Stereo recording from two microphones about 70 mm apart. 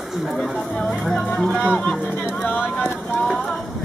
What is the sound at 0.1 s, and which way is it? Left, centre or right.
Speech, centre.